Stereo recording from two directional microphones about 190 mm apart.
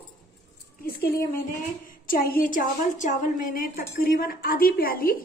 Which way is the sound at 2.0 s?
50° left (ahead or behind).